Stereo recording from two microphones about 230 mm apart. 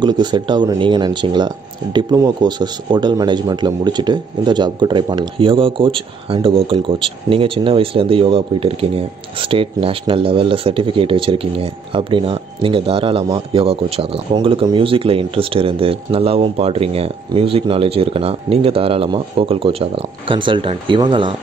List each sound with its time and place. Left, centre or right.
0.0 s speech: centre